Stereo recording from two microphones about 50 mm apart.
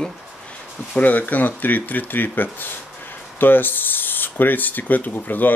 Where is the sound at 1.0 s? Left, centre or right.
Left.